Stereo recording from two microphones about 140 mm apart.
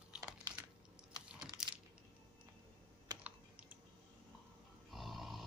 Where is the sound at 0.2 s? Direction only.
25° right (ahead or behind).